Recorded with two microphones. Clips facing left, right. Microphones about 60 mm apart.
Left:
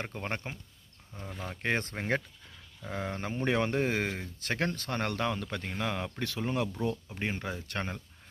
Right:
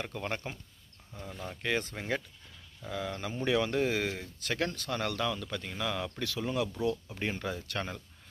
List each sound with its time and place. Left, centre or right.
0.0 s speech: left
1.1 s speech: centre
1.4 s speech: left